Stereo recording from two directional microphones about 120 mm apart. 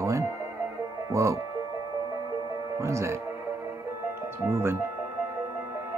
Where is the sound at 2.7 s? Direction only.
25° right (ahead or behind).